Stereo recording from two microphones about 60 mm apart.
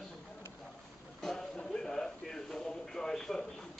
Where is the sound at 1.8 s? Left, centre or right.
Centre.